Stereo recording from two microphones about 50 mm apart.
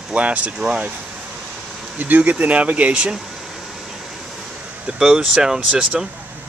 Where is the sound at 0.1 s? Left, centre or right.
Right.